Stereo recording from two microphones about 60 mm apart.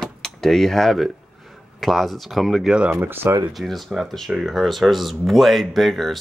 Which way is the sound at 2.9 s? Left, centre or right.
Right.